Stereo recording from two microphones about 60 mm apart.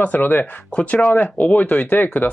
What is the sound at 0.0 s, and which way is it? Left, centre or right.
Speech, left.